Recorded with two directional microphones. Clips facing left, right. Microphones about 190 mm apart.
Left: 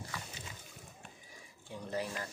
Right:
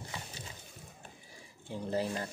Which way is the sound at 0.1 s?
25° right (ahead or behind).